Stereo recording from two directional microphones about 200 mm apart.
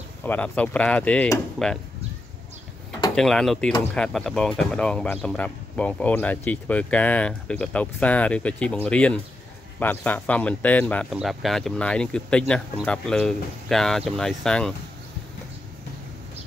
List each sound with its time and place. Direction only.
0.2 s speech: 10° left (ahead or behind)
3.2 s speech: 5° left (ahead or behind)